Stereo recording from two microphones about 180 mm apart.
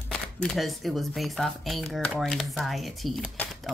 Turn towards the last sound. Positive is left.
turn(degrees=0)  # may be behind; listen again after turning